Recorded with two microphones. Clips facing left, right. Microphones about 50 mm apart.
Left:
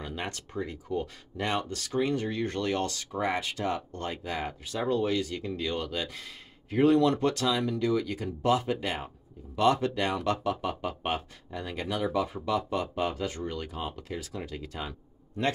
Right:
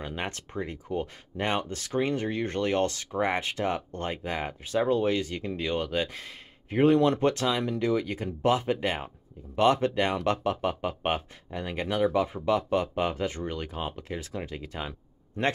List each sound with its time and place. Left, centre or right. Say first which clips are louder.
0.0 s speech: right 2 dB; right